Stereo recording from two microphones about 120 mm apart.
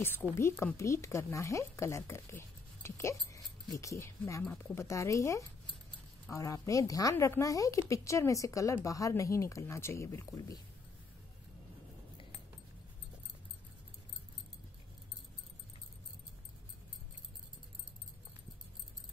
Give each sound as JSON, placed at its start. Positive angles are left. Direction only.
{"t": 0.0, "sound": "speech", "side_deg": 15}